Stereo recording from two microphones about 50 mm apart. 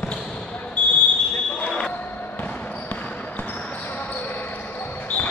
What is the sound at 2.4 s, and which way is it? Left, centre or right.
Basketball bounce, left.